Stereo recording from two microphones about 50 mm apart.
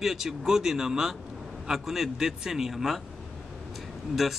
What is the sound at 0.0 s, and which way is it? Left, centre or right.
Speech, centre.